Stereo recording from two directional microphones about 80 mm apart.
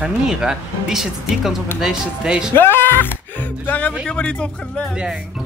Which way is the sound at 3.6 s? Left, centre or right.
Centre.